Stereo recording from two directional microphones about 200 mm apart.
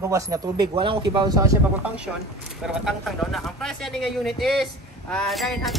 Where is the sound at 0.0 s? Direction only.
15° right (ahead or behind).